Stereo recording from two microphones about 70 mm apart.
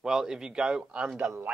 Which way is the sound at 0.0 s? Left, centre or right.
Centre.